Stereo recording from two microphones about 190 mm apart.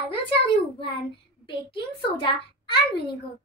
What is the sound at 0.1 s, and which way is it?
A child's voice, 30° left (ahead or behind).